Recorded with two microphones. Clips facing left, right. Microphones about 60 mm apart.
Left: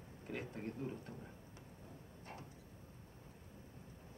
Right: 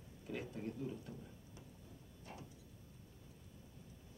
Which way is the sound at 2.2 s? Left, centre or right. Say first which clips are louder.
Even; left.